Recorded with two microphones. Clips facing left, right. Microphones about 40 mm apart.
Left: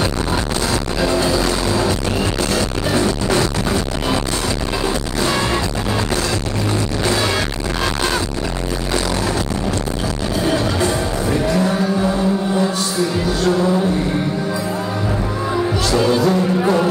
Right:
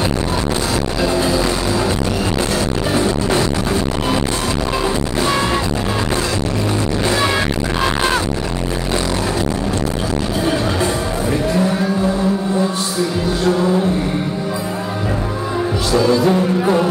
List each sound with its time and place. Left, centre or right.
1.0 s music: right
4.8 s music: centre
16.3 s music: centre